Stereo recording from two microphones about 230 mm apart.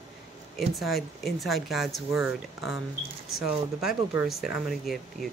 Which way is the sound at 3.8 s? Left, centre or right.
Centre.